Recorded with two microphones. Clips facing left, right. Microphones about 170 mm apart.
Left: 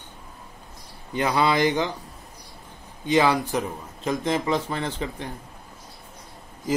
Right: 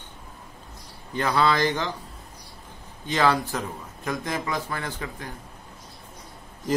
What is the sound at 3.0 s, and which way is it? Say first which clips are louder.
A man's voice: left 2 dB; 15° left (ahead or behind).